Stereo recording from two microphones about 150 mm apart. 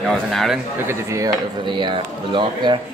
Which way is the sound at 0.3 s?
Centre (ahead or behind).